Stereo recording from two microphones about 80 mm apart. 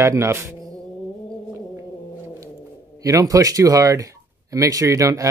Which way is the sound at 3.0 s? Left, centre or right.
Right.